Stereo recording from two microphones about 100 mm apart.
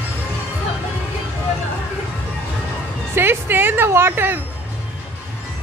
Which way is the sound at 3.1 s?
20° right (ahead or behind).